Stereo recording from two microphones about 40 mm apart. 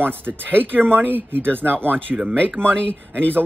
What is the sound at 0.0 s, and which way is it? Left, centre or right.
Speech, right.